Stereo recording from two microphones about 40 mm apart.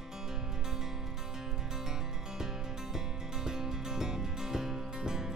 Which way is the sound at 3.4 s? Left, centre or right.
Centre.